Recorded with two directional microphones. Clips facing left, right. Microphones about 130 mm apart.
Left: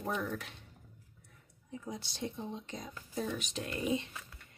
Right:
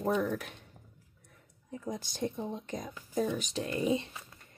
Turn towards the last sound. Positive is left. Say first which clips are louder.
# right 2 dB
turn(degrees=-35)  # may be behind; listen again after turning